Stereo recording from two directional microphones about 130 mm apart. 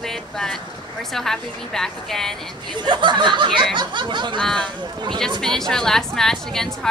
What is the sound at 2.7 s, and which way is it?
Speech, 35° right (ahead or behind).